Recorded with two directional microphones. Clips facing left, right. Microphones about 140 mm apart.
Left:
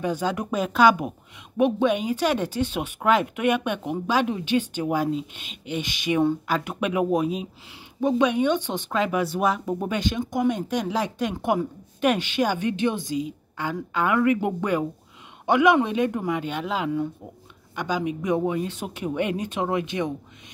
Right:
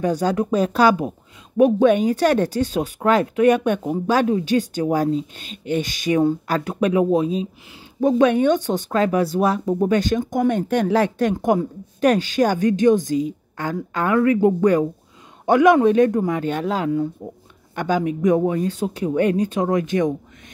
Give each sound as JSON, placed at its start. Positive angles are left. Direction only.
{"t": 0.0, "sound": "a woman's voice", "side_deg": -40}
{"t": 1.6, "sound": "a woman's voice", "side_deg": -45}
{"t": 8.0, "sound": "speech", "side_deg": -45}
{"t": 9.9, "sound": "a woman's voice", "side_deg": -45}
{"t": 17.7, "sound": "speech", "side_deg": -50}
{"t": 18.7, "sound": "a woman's voice", "side_deg": -35}